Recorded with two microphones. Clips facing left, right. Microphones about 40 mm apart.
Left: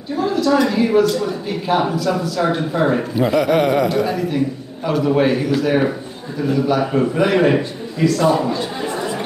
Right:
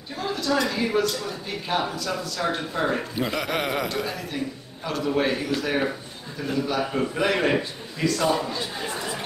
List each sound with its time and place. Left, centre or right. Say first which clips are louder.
0.1 s a woman's voice: left 9 dB; centre
3.2 s a man's voice: left 11 dB; centre
6.8 s a man's voice: left 7 dB; centre